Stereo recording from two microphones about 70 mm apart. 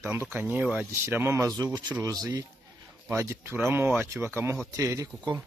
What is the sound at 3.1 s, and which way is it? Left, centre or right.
Speech, right.